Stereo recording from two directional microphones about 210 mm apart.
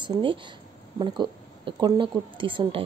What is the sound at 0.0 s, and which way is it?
Speech, 25° right (ahead or behind).